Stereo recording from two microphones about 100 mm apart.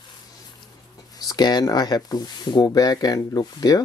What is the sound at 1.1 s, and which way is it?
Speech, 40° left (ahead or behind).